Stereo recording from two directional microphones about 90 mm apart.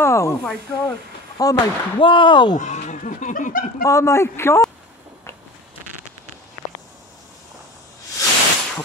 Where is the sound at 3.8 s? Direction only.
35° left (ahead or behind).